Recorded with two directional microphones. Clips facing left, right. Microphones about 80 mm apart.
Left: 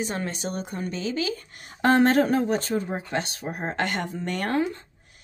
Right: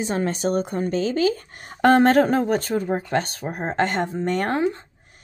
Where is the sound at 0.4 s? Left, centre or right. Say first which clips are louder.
Right 8 dB; right.